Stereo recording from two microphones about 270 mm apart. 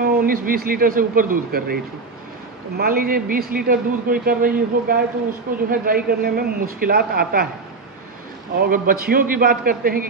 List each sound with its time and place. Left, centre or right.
0.0 s a man's voice: right
2.8 s a man's voice: right
8.5 s a man's voice: right